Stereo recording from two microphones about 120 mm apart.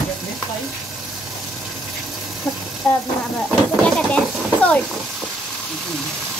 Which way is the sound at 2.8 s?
20° left (ahead or behind).